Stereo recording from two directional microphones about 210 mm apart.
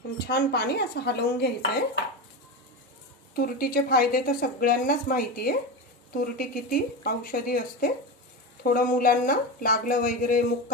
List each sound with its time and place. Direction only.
0.3 s a woman's voice: 50° left (ahead or behind)
3.3 s a woman's voice: 45° left (ahead or behind)